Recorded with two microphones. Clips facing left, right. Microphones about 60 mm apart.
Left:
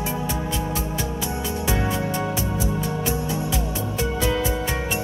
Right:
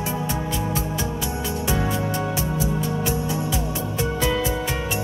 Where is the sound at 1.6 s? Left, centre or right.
Left.